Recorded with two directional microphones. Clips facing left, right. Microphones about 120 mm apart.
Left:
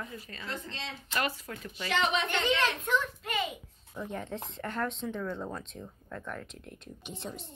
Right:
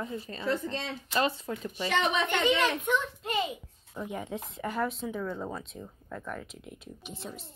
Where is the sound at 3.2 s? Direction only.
30° right (ahead or behind).